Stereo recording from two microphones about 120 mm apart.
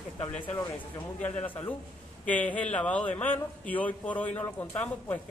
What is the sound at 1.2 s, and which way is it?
A man's voice, 15° left (ahead or behind).